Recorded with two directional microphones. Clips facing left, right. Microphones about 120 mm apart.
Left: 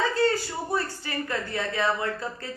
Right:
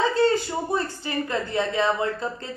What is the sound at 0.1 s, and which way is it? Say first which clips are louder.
Speech: right 4 dB; 20° right (ahead or behind).